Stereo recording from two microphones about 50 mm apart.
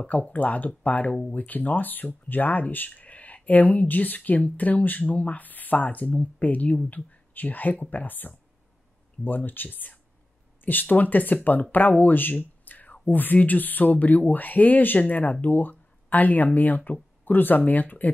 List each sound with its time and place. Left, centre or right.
0.3 s speech: left